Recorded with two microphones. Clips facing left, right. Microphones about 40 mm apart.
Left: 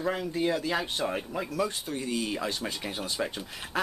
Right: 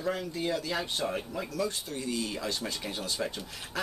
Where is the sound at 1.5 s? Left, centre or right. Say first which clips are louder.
Left 2 dB; left.